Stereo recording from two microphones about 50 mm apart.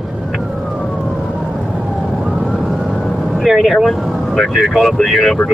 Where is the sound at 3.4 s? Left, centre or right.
Centre.